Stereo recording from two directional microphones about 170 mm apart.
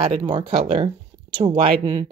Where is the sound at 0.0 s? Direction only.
35° right (ahead or behind).